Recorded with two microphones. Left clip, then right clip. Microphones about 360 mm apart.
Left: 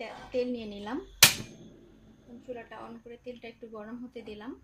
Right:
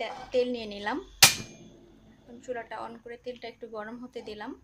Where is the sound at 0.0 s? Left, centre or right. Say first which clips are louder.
Right 4 dB; right.